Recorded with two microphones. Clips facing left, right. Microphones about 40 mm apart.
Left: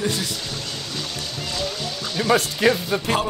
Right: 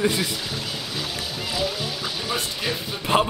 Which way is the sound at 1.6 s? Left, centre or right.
Centre.